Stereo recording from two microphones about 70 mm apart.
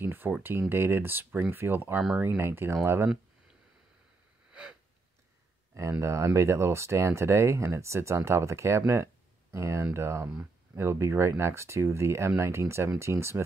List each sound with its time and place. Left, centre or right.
0.0 s a sound: right
0.4 s speech: right
4.5 s gasp: centre
5.8 s speech: right